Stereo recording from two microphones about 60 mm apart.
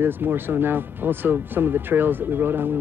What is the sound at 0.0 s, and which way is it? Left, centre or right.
Speech, right.